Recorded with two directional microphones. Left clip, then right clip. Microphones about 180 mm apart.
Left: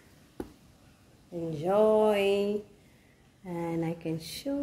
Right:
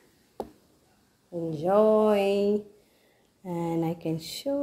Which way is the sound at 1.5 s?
15° right (ahead or behind).